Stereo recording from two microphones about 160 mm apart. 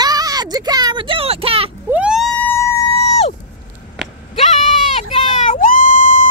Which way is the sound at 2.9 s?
35° left (ahead or behind).